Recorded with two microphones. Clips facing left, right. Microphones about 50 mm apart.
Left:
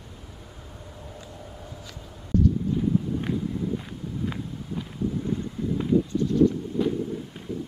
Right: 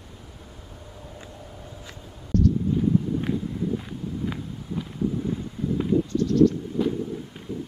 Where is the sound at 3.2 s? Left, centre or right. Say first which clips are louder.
Right 1 dB; centre.